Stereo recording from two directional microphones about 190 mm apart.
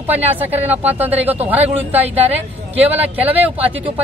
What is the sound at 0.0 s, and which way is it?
Speech, 10° right (ahead or behind).